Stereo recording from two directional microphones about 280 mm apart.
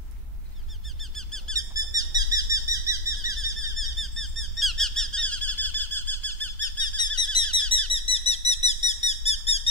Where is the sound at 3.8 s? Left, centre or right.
Centre.